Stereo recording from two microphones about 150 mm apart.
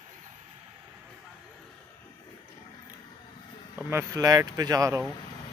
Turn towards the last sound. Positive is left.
turn(degrees=-20)  # may be behind; listen again after turning